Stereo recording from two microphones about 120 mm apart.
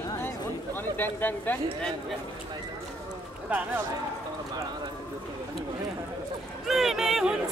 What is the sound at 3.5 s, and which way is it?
Speech, 15° right (ahead or behind).